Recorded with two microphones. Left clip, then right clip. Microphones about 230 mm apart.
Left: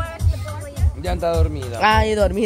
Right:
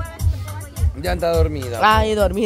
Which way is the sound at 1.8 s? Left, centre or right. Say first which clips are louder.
Right 1 dB; centre.